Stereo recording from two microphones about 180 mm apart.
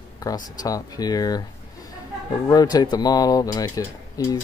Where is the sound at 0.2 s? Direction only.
20° left (ahead or behind).